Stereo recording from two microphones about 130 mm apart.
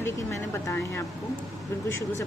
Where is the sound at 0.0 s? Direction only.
20° left (ahead or behind).